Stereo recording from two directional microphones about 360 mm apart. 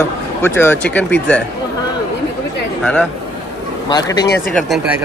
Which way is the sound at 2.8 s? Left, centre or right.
Centre.